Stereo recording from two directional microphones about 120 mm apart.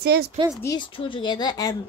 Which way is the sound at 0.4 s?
45° right (ahead or behind).